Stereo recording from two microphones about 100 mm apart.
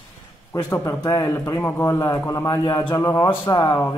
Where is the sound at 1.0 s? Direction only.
40° left (ahead or behind).